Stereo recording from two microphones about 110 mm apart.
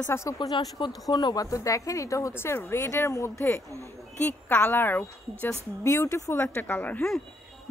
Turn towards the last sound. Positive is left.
turn(degrees=15)  # may be behind; listen again after turning